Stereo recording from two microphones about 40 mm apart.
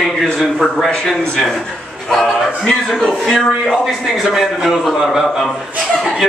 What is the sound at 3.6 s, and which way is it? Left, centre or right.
A man's voice, centre.